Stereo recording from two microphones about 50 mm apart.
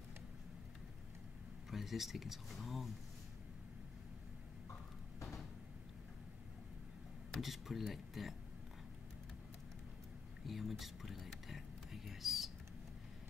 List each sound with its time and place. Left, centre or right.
1.7 s speech: centre
7.4 s speech: centre
10.4 s a sound: centre